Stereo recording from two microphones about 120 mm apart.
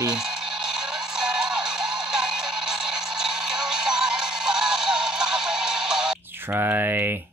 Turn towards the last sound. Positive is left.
turn(degrees=-15)  # may be behind; listen again after turning